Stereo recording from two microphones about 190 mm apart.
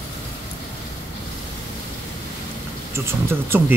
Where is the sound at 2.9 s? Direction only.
15° right (ahead or behind).